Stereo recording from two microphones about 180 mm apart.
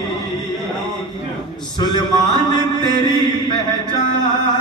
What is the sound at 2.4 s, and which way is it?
Music, 25° left (ahead or behind).